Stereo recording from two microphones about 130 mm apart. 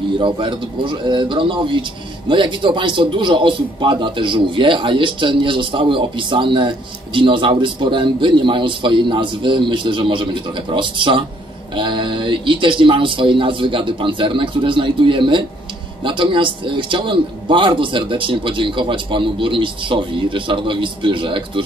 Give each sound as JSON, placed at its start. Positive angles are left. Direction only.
{"t": 0.2, "sound": "speech", "side_deg": -40}